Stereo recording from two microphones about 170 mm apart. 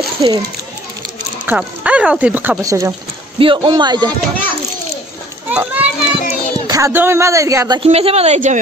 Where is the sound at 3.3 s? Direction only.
30° right (ahead or behind).